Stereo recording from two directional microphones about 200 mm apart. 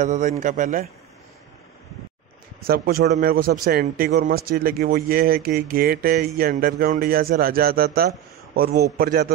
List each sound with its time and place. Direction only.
0.0 s a man's voice: 35° right (ahead or behind)
2.6 s speech: 45° right (ahead or behind)